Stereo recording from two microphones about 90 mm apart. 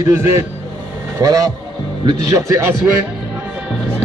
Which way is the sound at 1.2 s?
45° right (ahead or behind).